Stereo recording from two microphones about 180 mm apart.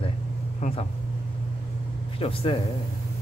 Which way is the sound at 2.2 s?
30° left (ahead or behind).